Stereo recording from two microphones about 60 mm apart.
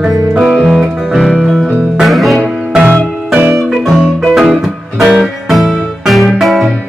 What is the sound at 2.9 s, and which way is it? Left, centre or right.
Music, right.